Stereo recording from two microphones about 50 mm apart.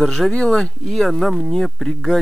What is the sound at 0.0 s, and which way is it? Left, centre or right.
Speech, centre.